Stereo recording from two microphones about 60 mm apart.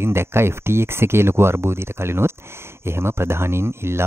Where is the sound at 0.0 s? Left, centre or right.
Right.